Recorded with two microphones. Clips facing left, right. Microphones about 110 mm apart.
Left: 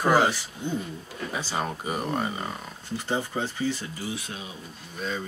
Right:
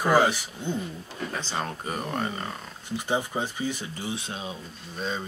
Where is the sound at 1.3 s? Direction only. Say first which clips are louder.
Left 3 dB; 10° left (ahead or behind).